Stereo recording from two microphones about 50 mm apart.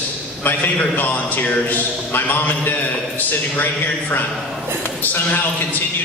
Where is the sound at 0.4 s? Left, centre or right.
Left.